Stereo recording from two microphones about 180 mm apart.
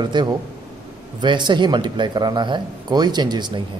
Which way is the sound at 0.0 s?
25° right (ahead or behind).